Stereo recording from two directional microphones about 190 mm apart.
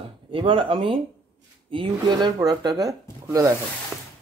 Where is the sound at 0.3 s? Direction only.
25° right (ahead or behind).